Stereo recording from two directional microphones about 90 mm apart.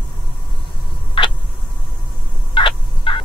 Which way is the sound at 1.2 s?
70° left (ahead or behind).